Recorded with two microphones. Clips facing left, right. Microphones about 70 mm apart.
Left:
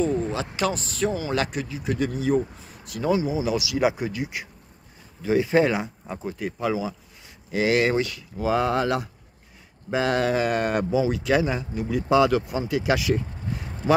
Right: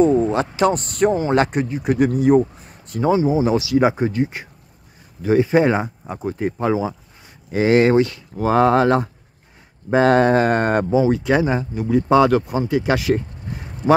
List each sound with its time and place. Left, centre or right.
0.3 s a man's voice: right
3.0 s speech: right
6.3 s speech: right
8.5 s a man's voice: right
12.1 s a man's voice: right
12.4 s speech: right